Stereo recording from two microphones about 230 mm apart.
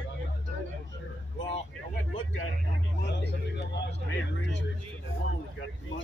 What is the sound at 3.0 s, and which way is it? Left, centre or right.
Vehicle, left.